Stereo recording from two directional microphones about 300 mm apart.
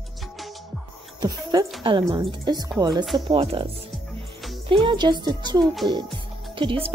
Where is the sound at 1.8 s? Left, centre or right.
Centre.